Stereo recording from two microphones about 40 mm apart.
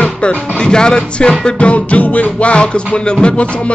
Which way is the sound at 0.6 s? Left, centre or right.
Left.